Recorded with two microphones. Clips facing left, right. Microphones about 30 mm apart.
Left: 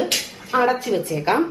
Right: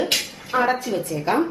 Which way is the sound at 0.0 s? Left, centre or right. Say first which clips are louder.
Even; centre.